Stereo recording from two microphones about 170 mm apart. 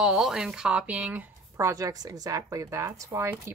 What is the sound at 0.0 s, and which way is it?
Speech, 5° right (ahead or behind).